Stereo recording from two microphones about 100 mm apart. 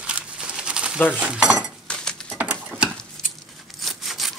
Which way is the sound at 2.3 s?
15° right (ahead or behind).